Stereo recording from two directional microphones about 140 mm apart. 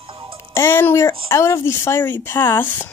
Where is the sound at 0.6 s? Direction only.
15° left (ahead or behind).